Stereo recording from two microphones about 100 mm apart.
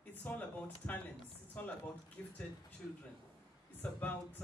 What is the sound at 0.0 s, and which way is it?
Speech, 20° left (ahead or behind).